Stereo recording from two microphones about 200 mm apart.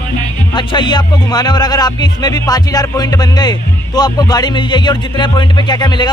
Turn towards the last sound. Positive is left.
turn(degrees=20)  # may be behind; listen again after turning